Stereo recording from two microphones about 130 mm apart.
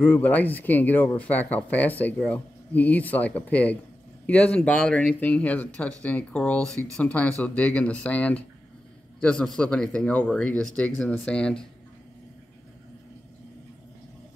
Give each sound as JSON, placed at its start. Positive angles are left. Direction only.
{"t": 0.0, "sound": "speech", "side_deg": 15}